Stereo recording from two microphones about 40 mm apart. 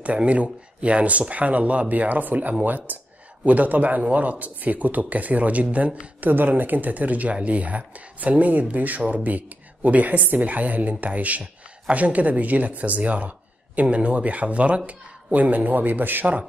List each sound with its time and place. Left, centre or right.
0.0 s a man's voice: right
6.3 s a man's voice: right